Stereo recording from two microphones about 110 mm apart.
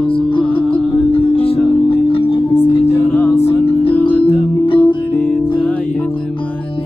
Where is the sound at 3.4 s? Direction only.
60° left (ahead or behind).